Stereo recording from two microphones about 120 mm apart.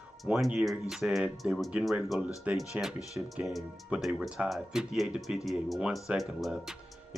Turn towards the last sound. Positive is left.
turn(degrees=0)  # may be behind; listen again after turning